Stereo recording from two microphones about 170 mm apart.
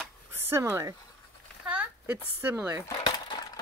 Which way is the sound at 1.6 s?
10° right (ahead or behind).